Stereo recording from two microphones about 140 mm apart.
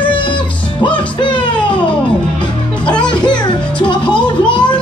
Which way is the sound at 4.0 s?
5° left (ahead or behind).